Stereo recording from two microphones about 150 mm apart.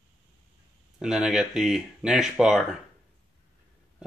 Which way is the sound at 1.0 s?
5° right (ahead or behind).